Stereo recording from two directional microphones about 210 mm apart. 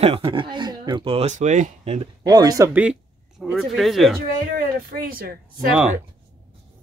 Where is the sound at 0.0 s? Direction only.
25° right (ahead or behind).